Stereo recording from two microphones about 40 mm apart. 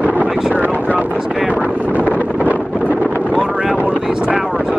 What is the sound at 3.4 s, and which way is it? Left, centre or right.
Boat, centre.